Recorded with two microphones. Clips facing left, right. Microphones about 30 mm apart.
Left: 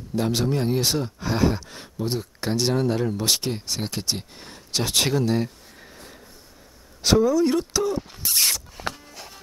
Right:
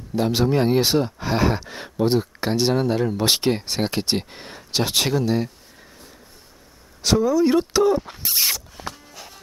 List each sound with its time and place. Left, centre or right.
0.1 s speech: centre
0.6 s speech: right
2.4 s speech: centre
3.2 s speech: right
4.4 s speech: right
4.9 s speech: centre
7.0 s speech: centre
7.3 s squeal: centre
8.4 s rodents: centre